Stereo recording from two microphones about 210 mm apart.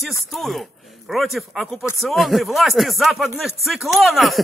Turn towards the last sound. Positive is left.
turn(degrees=0)  # may be behind; listen again after turning